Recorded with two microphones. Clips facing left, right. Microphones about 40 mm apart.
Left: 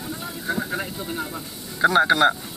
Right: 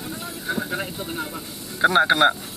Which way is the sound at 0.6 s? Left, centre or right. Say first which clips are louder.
Even; centre.